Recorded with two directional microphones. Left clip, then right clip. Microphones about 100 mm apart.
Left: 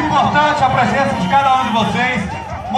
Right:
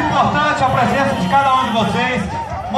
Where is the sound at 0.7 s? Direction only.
30° left (ahead or behind).